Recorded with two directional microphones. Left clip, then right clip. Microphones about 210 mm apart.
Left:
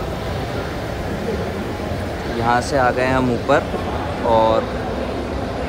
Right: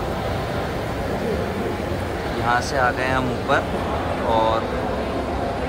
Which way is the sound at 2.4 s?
10° right (ahead or behind).